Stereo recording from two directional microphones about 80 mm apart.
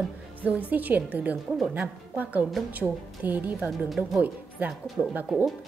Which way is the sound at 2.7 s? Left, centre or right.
Right.